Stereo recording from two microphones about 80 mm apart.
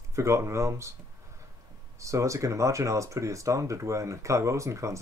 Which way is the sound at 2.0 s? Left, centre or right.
Right.